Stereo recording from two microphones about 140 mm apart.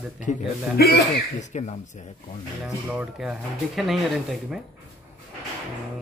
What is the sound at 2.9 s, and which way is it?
Speech, 5° right (ahead or behind).